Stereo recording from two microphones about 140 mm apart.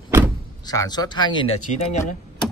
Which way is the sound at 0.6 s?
25° left (ahead or behind).